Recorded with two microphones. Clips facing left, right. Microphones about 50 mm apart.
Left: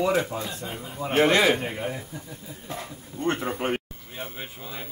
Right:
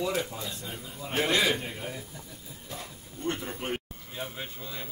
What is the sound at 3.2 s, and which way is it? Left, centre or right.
Speech, left.